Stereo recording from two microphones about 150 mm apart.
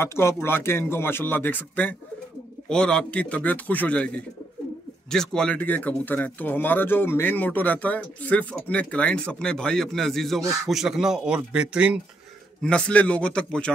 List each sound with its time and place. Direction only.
0.0 s speech: 15° left (ahead or behind); by 12.0 s 5° right (ahead or behind)
12.6 s speech: 5° left (ahead or behind)